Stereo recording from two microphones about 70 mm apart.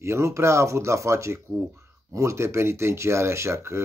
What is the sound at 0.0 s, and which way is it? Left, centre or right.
Speech, right.